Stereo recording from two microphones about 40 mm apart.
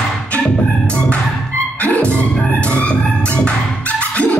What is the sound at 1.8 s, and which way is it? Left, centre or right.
Music, left.